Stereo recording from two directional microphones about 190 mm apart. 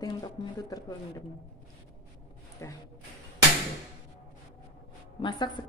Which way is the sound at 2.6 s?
15° left (ahead or behind).